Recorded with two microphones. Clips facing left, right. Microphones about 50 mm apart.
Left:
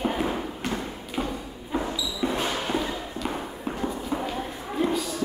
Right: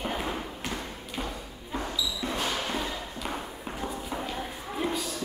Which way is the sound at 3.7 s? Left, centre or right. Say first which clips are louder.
Left 4 dB; centre.